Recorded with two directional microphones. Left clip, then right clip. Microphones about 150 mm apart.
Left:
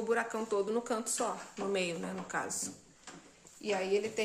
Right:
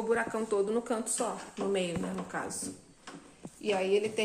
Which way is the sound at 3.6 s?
Centre (ahead or behind).